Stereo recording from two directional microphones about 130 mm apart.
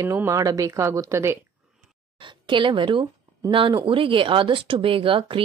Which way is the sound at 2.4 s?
40° right (ahead or behind).